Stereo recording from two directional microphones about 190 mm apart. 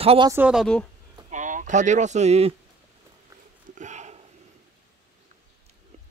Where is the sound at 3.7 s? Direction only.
40° right (ahead or behind).